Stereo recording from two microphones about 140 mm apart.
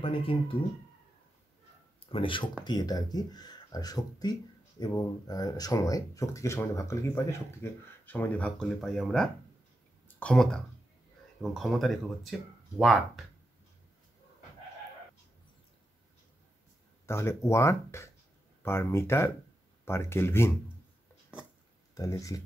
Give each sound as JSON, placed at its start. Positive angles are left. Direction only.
{"t": 0.0, "sound": "speech", "side_deg": 40}
{"t": 2.0, "sound": "speech", "side_deg": 40}
{"t": 17.0, "sound": "speech", "side_deg": 20}
{"t": 21.9, "sound": "speech", "side_deg": 25}